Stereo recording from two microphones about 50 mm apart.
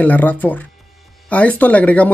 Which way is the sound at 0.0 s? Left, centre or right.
Left.